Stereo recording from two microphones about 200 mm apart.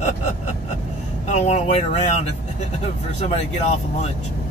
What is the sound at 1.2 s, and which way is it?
Speech, 30° left (ahead or behind).